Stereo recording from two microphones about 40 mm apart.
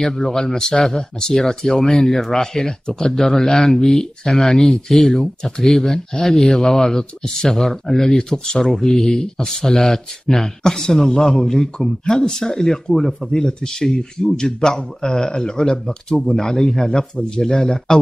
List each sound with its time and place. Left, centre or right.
0.0 s speech: centre